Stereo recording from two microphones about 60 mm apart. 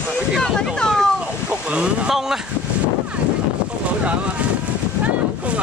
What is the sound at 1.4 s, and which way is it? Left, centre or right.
Speech, centre.